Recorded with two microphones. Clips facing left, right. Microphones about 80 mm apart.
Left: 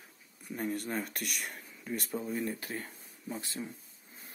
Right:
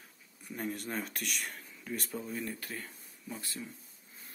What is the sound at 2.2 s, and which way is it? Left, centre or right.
Speech, centre.